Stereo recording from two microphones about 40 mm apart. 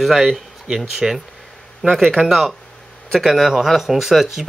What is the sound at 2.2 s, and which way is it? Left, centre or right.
Speech, centre.